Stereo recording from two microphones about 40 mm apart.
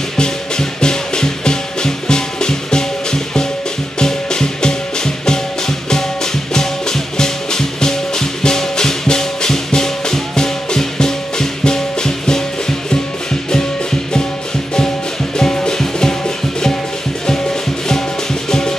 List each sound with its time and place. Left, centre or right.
0.2 s music: centre
15.3 s music: centre
18.5 s music: centre